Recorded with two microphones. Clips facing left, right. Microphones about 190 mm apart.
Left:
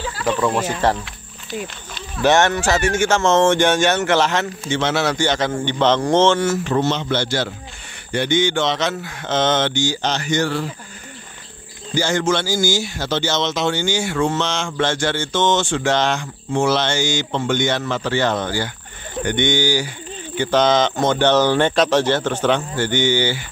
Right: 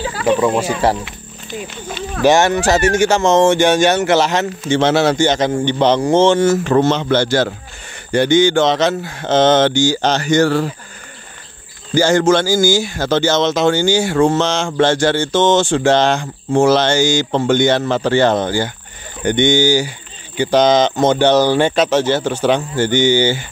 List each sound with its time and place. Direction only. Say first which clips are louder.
0.4 s speech: right 4 dB; 10° right (ahead or behind)
2.9 s a man's voice: right 4 dB; 35° right (ahead or behind)
3.2 s speech: right 1 dB; 15° right (ahead or behind)
4.6 s a man's voice: right 8 dB; 35° right (ahead or behind); by 6.4 s 10° right (ahead or behind)
6.6 s a man's voice: right 6 dB; 55° right (ahead or behind)
7.1 s a man's voice: right 6 dB; 45° right (ahead or behind)
12.0 s a man's voice: right 7 dB; 40° right (ahead or behind); by 23.4 s 20° right (ahead or behind)